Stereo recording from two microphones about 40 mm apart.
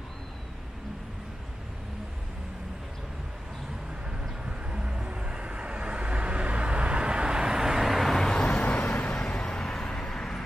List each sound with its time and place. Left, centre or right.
4.5 s vehicle: right; by 8.3 s centre
8.3 s vehicle: left
8.6 s vehicle: left
9.0 s vehicle: centre